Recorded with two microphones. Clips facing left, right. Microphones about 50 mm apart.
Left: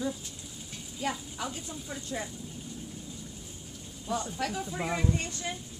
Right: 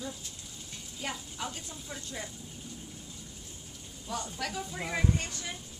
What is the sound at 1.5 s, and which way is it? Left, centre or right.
Speech, centre.